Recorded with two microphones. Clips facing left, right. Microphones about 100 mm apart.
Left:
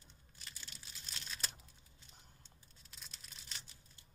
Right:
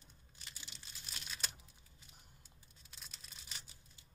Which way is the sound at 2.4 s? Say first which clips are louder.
Left 1 dB; centre (ahead or behind).